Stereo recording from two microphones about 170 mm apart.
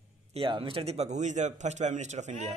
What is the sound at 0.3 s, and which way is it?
A man's voice, 30° right (ahead or behind).